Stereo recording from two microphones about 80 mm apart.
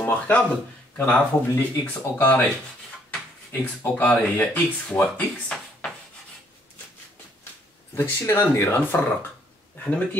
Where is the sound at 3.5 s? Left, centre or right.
Left.